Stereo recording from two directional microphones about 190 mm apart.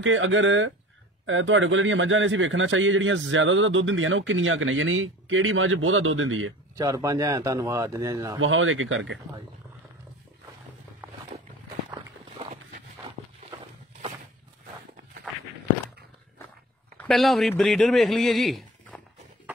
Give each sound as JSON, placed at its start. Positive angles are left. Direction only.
{"t": 0.0, "sound": "a man's voice", "side_deg": -90}
{"t": 6.8, "sound": "speech", "side_deg": -20}
{"t": 8.4, "sound": "a man's voice", "side_deg": -90}
{"t": 16.9, "sound": "a man's voice", "side_deg": 5}